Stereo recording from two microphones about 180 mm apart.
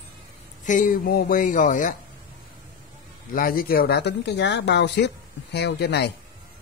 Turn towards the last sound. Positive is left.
turn(degrees=65)  # may be behind; listen again after turning